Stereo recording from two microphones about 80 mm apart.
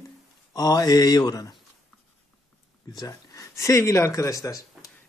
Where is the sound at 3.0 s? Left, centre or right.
Left.